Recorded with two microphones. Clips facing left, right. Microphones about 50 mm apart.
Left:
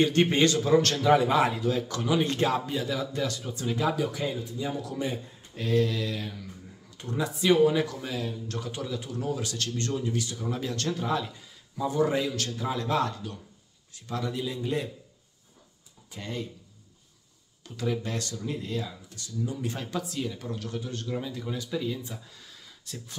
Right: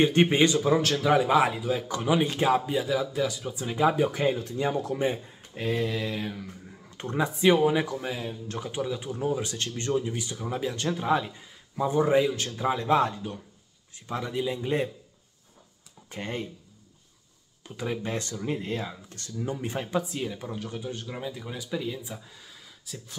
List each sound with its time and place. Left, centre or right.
0.0 s a man's voice: centre
3.9 s speech: right
4.4 s speech: right
4.8 s speech: right
6.9 s a sound: right
7.2 s speech: right
16.1 s speech: right
17.6 s speech: right
19.6 s a man's voice: right